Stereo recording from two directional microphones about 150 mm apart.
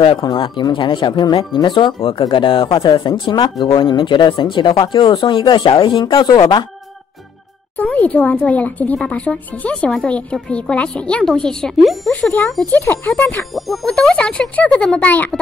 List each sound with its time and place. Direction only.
0.0 s speech: 30° left (ahead or behind)
7.7 s speech: 10° left (ahead or behind)
12.1 s speech: 10° left (ahead or behind)